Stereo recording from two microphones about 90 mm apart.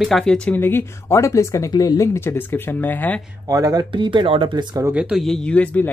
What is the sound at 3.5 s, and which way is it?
Speech, 45° right (ahead or behind).